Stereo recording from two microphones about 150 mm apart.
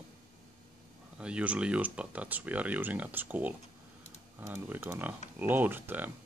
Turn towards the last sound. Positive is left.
turn(degrees=-15)  # may be behind; listen again after turning